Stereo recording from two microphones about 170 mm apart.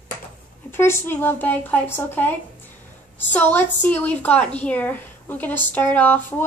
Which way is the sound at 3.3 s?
10° left (ahead or behind).